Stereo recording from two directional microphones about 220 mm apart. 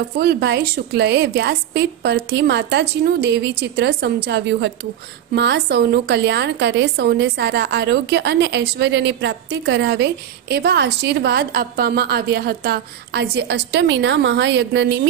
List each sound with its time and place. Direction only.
0.2 s a woman's voice: 45° right (ahead or behind)